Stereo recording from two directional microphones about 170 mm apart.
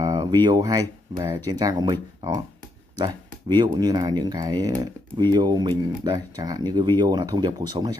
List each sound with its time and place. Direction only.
0.0 s speech: 20° right (ahead or behind)